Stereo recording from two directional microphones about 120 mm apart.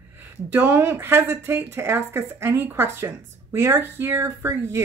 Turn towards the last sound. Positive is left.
turn(degrees=-20)  # may be behind; listen again after turning